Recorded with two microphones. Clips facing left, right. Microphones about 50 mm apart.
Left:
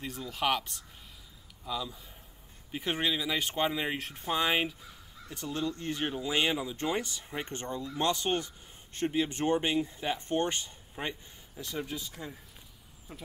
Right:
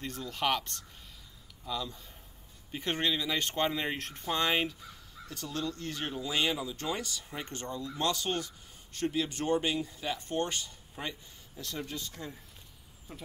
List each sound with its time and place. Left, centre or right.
0.0 s speech: centre